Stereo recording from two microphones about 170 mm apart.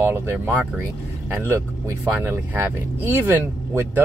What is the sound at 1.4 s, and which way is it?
Speech, 15° right (ahead or behind).